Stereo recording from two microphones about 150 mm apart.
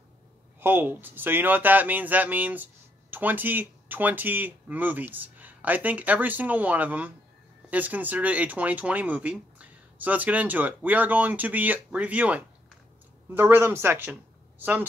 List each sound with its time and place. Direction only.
0.6 s speech: 15° right (ahead or behind)